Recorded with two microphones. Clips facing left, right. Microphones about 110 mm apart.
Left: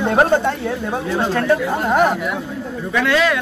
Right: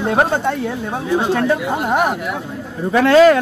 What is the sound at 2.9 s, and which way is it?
Speech, 35° right (ahead or behind).